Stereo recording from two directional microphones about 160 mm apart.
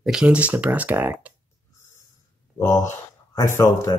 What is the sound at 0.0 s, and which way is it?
Speech, 5° right (ahead or behind).